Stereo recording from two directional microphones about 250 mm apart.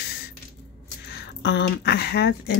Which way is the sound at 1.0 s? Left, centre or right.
Left.